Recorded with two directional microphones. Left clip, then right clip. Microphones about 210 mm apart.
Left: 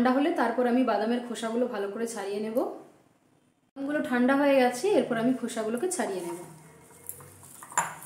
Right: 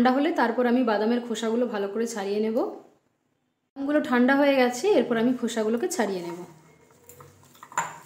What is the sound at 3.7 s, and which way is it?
Speech, 30° right (ahead or behind).